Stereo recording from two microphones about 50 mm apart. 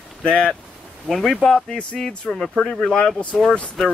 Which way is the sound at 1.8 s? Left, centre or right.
Centre.